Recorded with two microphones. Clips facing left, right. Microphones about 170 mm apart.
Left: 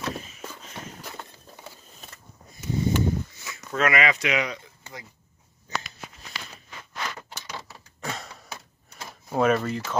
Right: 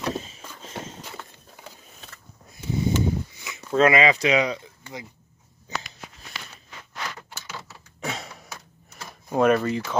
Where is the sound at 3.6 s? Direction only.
30° right (ahead or behind).